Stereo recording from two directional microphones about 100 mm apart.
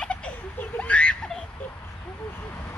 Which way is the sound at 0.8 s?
15° left (ahead or behind).